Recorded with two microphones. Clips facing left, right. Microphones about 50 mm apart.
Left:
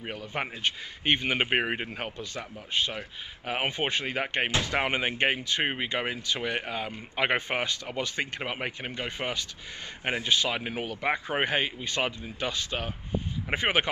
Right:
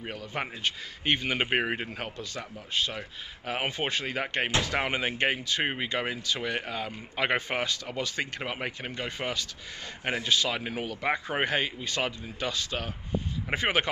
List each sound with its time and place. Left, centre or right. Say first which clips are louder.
0.0 s speech: left 1 dB; centre